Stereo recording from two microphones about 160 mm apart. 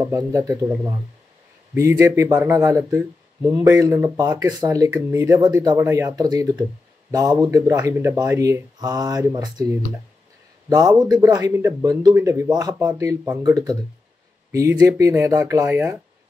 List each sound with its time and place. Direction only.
0.0 s speech: 20° right (ahead or behind)